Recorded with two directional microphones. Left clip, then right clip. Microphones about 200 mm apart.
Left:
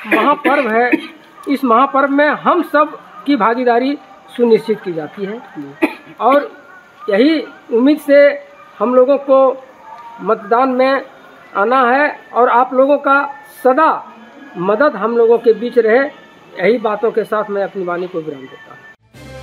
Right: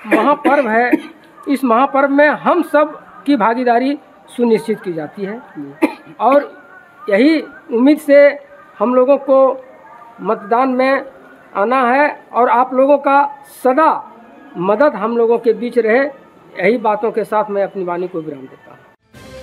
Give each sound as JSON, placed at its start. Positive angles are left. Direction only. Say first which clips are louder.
{"t": 0.5, "sound": "a woman's voice", "louder": "even", "side_deg": -15}